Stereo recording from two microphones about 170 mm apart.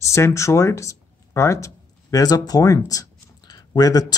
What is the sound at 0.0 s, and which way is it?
Speech, 15° left (ahead or behind).